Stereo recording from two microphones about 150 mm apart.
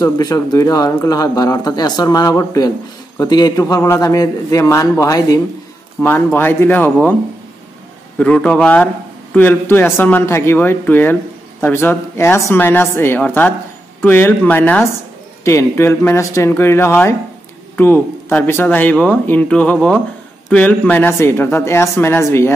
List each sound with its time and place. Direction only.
0.0 s speech: 25° left (ahead or behind)
8.2 s speech: 5° left (ahead or behind)